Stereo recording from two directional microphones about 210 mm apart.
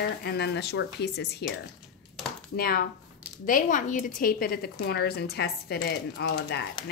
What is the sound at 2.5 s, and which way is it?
A woman's voice, 45° left (ahead or behind).